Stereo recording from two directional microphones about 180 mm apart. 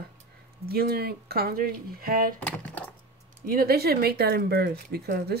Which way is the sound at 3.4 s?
55° right (ahead or behind).